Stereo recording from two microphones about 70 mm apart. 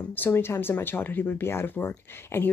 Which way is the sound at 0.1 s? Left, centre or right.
Left.